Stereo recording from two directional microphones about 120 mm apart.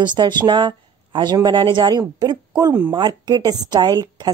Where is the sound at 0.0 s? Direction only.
40° right (ahead or behind).